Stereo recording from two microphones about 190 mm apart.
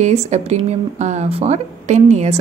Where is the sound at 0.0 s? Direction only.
35° right (ahead or behind).